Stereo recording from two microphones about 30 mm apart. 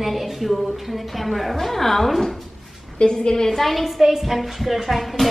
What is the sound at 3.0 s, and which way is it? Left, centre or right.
Speech, left.